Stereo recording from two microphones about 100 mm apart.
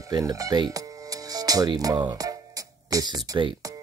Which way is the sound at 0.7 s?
40° right (ahead or behind).